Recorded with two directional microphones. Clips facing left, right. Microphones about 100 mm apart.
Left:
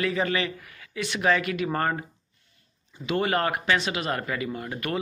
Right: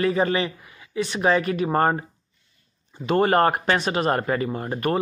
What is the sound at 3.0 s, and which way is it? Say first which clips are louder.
Speech: right 7 dB; 40° right (ahead or behind).